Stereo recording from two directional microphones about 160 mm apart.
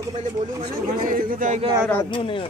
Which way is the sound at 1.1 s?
55° right (ahead or behind).